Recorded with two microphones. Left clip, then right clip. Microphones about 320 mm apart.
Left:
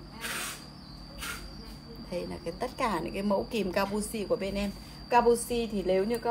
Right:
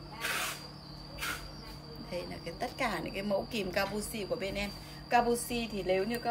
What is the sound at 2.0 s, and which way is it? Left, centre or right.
A woman's voice, centre.